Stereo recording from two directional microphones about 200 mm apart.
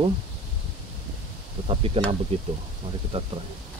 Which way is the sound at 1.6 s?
30° right (ahead or behind).